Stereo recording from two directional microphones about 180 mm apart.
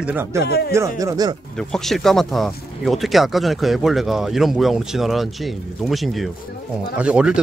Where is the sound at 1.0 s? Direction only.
20° right (ahead or behind).